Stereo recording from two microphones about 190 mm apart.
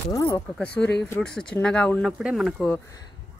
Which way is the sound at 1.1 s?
5° left (ahead or behind).